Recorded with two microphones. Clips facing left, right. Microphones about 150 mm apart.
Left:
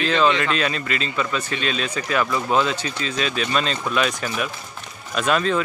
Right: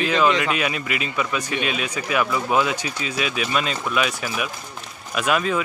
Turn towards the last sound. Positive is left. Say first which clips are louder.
# left 1 dB
turn(degrees=-10)  # may be behind; listen again after turning